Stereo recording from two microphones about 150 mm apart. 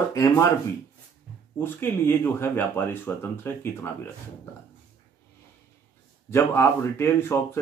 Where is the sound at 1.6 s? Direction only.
15° left (ahead or behind).